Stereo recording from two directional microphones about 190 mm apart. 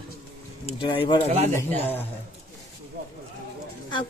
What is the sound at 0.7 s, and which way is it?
Speech, 25° left (ahead or behind).